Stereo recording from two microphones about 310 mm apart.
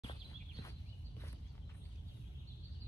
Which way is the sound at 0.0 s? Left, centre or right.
Centre.